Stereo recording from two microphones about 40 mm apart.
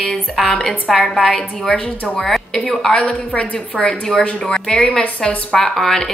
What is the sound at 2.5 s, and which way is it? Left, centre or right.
A woman's voice, centre.